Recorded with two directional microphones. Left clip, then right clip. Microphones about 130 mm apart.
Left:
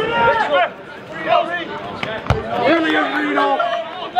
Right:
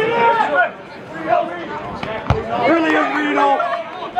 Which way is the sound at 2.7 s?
20° left (ahead or behind).